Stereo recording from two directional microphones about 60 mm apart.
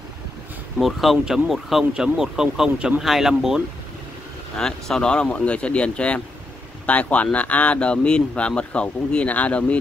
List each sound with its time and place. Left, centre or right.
0.7 s speech: centre
4.6 s speech: centre